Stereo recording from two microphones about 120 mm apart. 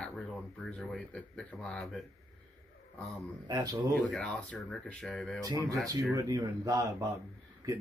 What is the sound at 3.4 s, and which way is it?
Speech, 30° right (ahead or behind).